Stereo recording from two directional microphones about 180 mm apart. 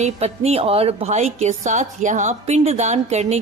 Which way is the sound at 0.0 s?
35° right (ahead or behind).